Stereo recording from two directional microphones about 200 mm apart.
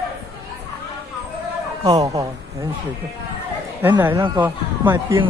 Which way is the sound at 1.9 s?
20° right (ahead or behind).